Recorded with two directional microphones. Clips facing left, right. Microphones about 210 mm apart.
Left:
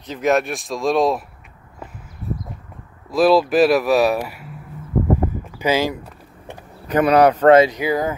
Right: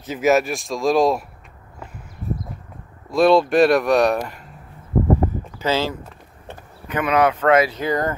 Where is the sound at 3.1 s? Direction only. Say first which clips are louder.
Even; 5° left (ahead or behind).